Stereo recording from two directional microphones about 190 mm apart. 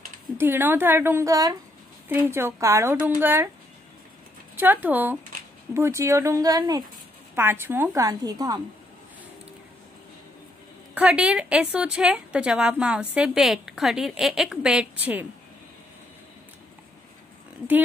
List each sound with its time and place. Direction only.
0.4 s a woman's voice: 10° right (ahead or behind)
4.6 s a woman's voice: 10° right (ahead or behind)
11.0 s a woman's voice: 5° right (ahead or behind)